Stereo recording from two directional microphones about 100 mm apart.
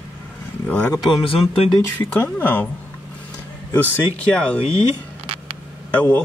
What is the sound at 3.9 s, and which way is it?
Speech, 10° left (ahead or behind).